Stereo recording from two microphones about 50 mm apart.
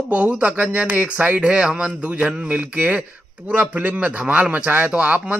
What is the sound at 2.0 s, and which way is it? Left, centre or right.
Speech, right.